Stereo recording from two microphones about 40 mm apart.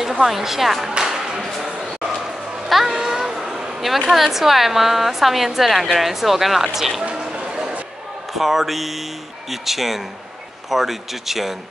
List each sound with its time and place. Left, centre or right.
0.0 s a woman's voice: centre
0.9 s music: centre
2.7 s a sound: centre
4.1 s a woman's voice: centre
7.2 s music: centre
8.3 s a woman's voice: centre